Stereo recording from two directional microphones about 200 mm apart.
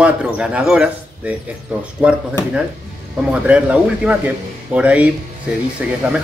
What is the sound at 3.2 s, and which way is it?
Speech, 5° right (ahead or behind).